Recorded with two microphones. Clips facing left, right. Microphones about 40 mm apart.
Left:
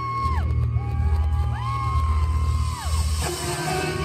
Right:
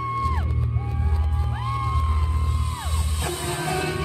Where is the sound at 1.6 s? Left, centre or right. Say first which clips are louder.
Even; right.